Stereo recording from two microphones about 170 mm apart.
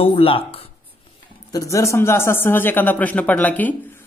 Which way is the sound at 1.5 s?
20° left (ahead or behind).